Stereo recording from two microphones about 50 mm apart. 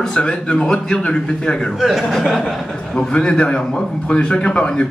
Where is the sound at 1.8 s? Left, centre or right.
Centre.